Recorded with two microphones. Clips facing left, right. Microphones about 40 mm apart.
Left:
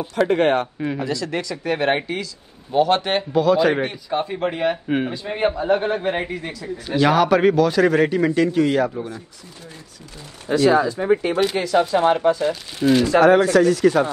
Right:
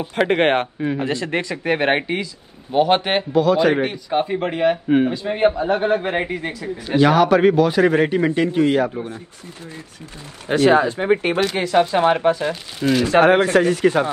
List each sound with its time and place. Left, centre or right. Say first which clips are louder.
0.1 s a man's voice: right 1 dB; right
3.3 s a man's voice: right 1 dB; centre
4.1 s a man's voice: right 2 dB; centre
5.7 s speech: right 1 dB; centre
6.4 s a man's voice: right 3 dB; right
7.0 s a man's voice: right 2 dB; centre
7.5 s a man's voice: right 1 dB; centre
10.5 s speech: right 1 dB; right
12.7 s a man's voice: left 2 dB; centre
13.0 s speech: right 1 dB; right